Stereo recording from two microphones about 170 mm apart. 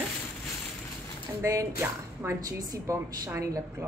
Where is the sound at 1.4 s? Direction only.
20° right (ahead or behind).